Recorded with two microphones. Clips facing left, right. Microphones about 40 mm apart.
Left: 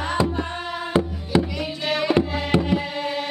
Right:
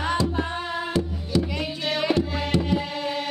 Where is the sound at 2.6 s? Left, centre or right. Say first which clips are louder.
Left 2 dB; centre.